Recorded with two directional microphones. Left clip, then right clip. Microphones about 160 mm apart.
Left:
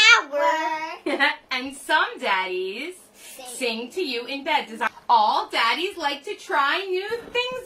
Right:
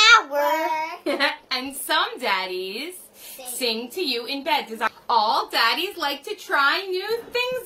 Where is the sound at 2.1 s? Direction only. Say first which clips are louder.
Left 1 dB; 20° right (ahead or behind).